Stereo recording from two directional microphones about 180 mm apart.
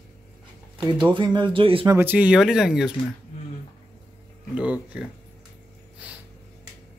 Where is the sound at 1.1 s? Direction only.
25° right (ahead or behind).